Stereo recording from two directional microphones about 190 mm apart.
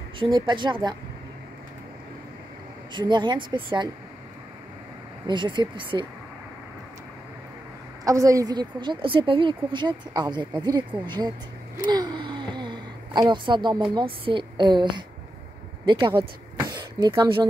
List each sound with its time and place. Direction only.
0.2 s a woman's voice: 25° right (ahead or behind)
2.9 s a woman's voice: 25° right (ahead or behind)
5.2 s a woman's voice: 25° right (ahead or behind)
8.0 s a woman's voice: 15° right (ahead or behind)
11.8 s a sound: 20° right (ahead or behind)
13.9 s a woman's voice: 25° right (ahead or behind)